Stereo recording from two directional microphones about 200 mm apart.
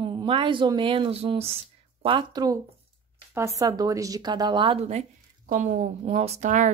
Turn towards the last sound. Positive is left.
turn(degrees=-40)  # may be behind; listen again after turning